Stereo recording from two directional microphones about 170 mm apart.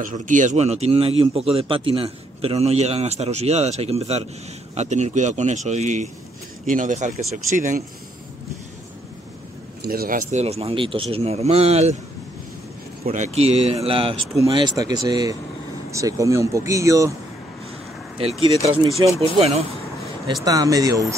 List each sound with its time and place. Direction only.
0.0 s a man's voice: 50° right (ahead or behind)
9.8 s speech: 60° right (ahead or behind)
10.4 s a man's voice: 35° right (ahead or behind)
13.0 s a man's voice: 45° right (ahead or behind); by 17.1 s 20° right (ahead or behind)
18.6 s a man's voice: 30° right (ahead or behind)
20.4 s speech: 20° right (ahead or behind)